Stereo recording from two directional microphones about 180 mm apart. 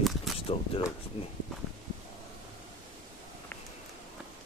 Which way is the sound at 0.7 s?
30° left (ahead or behind).